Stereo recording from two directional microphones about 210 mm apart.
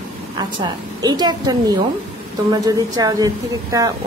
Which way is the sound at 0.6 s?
20° right (ahead or behind).